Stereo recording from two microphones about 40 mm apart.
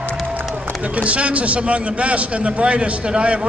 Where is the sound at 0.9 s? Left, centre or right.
Right.